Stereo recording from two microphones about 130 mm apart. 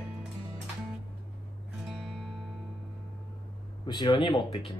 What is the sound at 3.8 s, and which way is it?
Speech, 35° left (ahead or behind).